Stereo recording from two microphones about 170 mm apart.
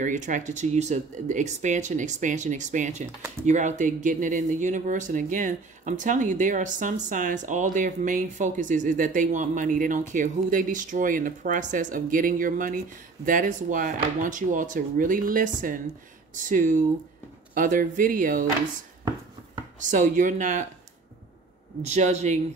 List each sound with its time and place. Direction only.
0.0 s speech: 50° right (ahead or behind)
19.8 s speech: 50° right (ahead or behind)
21.8 s speech: 40° right (ahead or behind)